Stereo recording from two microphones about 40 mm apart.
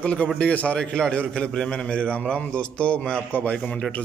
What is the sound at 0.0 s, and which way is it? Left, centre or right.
Speech, left.